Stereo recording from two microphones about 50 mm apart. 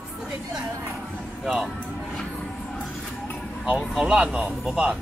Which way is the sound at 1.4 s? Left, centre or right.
Centre.